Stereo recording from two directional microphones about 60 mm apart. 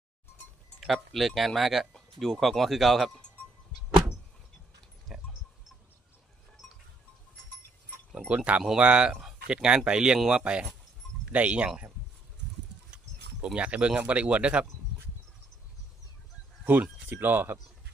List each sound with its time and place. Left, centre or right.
0.7 s speech: centre
5.1 s pig: centre
8.4 s speech: right
13.6 s speech: centre
16.7 s speech: right